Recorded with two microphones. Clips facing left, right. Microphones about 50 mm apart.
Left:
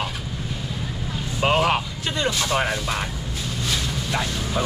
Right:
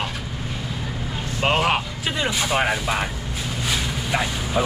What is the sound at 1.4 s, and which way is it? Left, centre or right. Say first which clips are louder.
Speech: even; centre.